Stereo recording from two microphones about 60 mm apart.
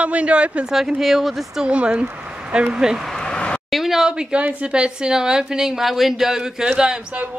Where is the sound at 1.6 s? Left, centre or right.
Centre.